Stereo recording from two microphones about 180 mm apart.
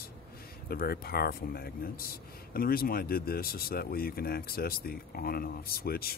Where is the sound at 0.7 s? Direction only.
55° left (ahead or behind).